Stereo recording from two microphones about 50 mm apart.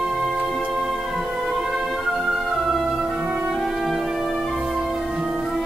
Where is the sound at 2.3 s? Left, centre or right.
Centre.